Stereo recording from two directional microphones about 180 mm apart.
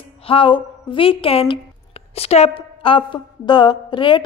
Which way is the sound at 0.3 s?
30° left (ahead or behind).